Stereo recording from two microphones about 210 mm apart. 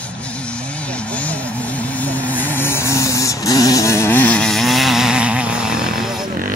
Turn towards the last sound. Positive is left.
turn(degrees=0)  # may be behind; listen again after turning